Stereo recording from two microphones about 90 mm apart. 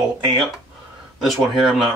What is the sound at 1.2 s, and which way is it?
Speech, centre (ahead or behind).